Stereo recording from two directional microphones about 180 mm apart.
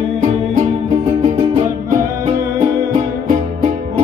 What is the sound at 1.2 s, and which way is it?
Music, 40° right (ahead or behind).